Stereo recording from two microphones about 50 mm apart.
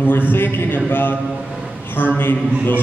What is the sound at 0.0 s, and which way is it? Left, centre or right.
A man's voice, left.